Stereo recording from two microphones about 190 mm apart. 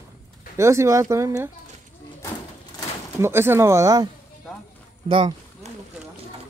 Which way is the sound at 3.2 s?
10° right (ahead or behind).